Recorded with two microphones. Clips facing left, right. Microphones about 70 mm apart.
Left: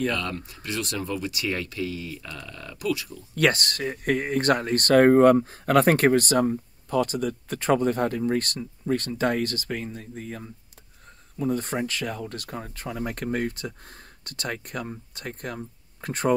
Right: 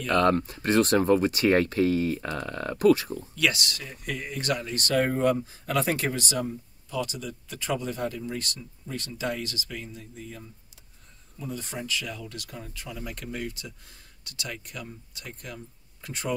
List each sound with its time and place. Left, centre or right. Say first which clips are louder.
0.1 s speech: right 8 dB; right
3.3 s speech: left 5 dB; left